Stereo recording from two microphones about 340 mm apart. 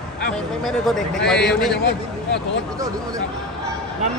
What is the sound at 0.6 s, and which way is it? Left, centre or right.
A man's voice, centre.